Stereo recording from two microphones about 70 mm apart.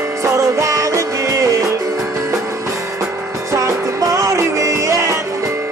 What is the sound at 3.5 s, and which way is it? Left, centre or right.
Music, right.